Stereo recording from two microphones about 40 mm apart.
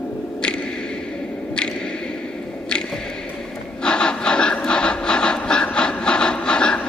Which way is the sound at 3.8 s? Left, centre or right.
Left.